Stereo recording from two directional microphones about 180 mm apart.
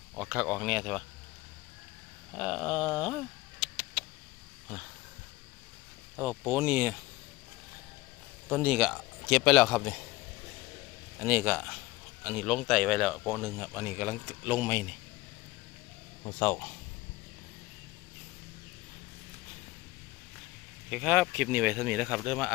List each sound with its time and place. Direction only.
0.1 s speech: 5° right (ahead or behind)
2.3 s a sound: centre (ahead or behind)
6.1 s speech: 10° right (ahead or behind)
8.5 s speech: centre (ahead or behind)
11.1 s speech: 10° right (ahead or behind)
13.6 s speech: 10° right (ahead or behind)
16.3 s speech: 20° left (ahead or behind)
20.9 s speech: 5° right (ahead or behind)